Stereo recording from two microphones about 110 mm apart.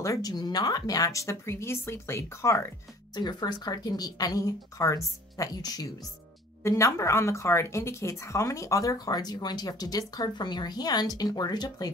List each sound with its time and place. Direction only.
0.0 s speech: 35° left (ahead or behind)
3.2 s speech: 40° left (ahead or behind)